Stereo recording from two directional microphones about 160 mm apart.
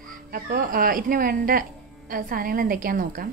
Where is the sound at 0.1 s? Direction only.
65° right (ahead or behind).